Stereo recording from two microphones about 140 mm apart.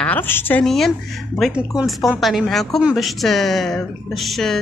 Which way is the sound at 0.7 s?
Centre (ahead or behind).